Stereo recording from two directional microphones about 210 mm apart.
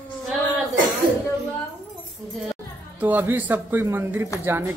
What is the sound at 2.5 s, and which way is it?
Speech, 10° right (ahead or behind).